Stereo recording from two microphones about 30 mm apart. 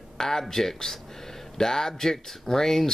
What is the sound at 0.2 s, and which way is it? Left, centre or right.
Speech, centre.